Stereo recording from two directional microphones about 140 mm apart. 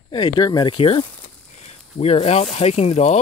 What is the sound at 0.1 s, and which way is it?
Speech, 30° left (ahead or behind).